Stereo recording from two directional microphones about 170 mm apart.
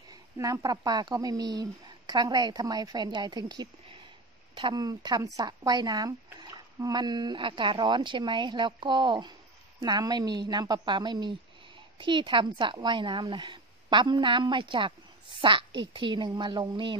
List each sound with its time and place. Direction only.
0.1 s a child's voice: 20° right (ahead or behind)